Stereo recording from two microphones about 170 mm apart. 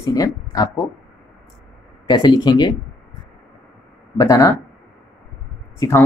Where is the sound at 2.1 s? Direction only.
25° left (ahead or behind).